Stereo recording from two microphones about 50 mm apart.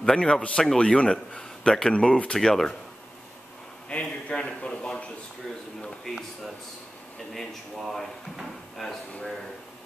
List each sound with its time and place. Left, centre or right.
0.0 s a man's voice: centre
3.9 s a sound: left
7.3 s drawer open or close: centre